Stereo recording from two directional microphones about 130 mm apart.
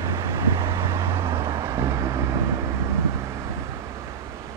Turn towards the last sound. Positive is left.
turn(degrees=-20)  # may be behind; listen again after turning